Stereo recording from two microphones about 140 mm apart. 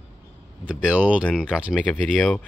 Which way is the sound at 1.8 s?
Centre (ahead or behind).